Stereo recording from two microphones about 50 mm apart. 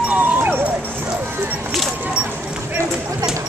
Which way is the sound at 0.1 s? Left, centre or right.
Right.